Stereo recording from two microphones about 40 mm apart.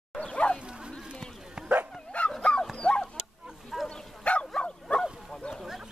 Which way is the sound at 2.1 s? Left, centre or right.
Left.